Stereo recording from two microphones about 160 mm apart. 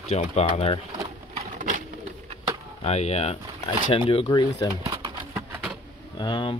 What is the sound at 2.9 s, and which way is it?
Speech, 45° left (ahead or behind).